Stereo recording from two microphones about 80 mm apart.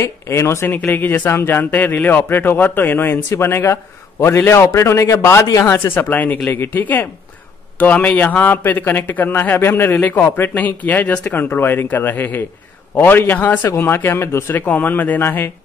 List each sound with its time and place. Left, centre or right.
0.0 s speech: left
0.7 s speech: left
5.9 s speech: left